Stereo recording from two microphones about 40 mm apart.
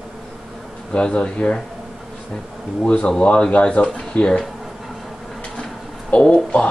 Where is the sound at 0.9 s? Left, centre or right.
Left.